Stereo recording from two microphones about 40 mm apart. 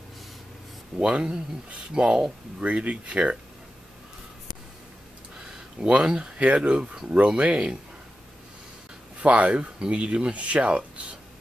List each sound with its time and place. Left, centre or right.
1.0 s speech: right
2.6 s speech: right
5.8 s speech: centre
6.1 s speech: right
9.2 s speech: right